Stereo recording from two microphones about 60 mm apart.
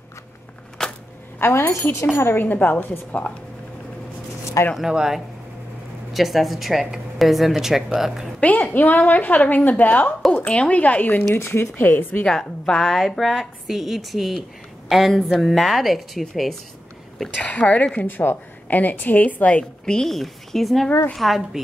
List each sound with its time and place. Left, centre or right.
0.8 s a sound: centre
1.7 s speech: left
2.3 s a woman's voice: left
4.7 s a woman's voice: centre
8.4 s a woman's voice: left
11.3 s a woman's voice: left
12.3 s a woman's voice: centre
17.5 s a woman's voice: left
18.0 s a woman's voice: left
19.8 s a woman's voice: centre